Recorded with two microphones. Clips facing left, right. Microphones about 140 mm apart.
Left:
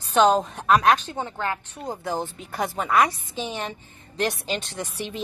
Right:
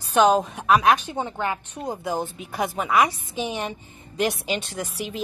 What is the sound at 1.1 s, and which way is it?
A woman's voice, 15° right (ahead or behind).